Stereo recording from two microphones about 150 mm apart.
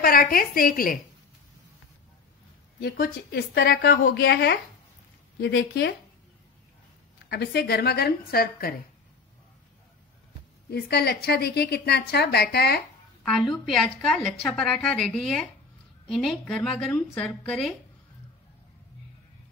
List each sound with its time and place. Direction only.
0.0 s a woman's voice: 75° left (ahead or behind)
2.8 s a woman's voice: 90° left
7.2 s a woman's voice: 90° left
10.7 s a woman's voice: 90° left
13.2 s speech: centre (ahead or behind)